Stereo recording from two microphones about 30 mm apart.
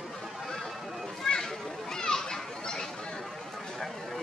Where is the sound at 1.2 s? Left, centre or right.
Centre.